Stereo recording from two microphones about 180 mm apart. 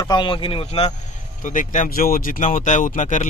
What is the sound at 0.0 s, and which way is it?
Speech, 25° left (ahead or behind).